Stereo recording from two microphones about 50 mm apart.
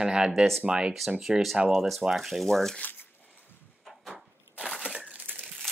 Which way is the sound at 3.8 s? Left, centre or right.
Centre.